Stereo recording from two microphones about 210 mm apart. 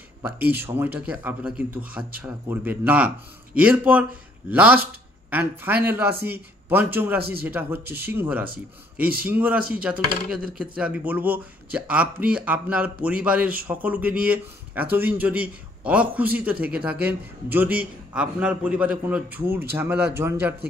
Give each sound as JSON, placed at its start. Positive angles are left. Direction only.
{"t": 0.2, "sound": "speech", "side_deg": -10}
{"t": 7.2, "sound": "speech", "side_deg": -50}
{"t": 7.4, "sound": "speech", "side_deg": -10}